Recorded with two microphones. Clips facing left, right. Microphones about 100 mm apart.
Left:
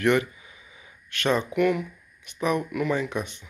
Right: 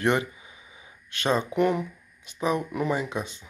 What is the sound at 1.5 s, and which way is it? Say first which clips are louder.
Speech: left 1 dB; 30° right (ahead or behind).